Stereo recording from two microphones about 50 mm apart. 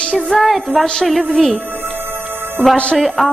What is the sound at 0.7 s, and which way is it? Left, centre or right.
Speech, left.